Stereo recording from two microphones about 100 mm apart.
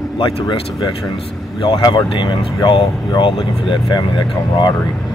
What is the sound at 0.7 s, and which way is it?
Speech, 40° left (ahead or behind).